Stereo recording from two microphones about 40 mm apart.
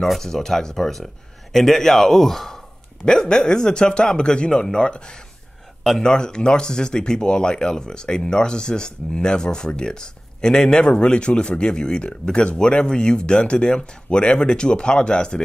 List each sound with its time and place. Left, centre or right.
0.0 s a man's voice: centre
3.1 s speech: centre